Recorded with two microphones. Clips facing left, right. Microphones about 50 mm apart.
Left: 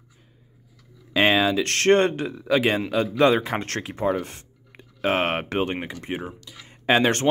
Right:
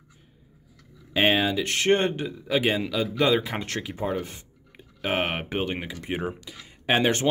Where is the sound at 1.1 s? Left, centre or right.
Left.